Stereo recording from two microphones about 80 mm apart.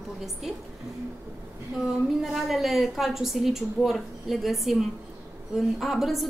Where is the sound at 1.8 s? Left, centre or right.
Centre.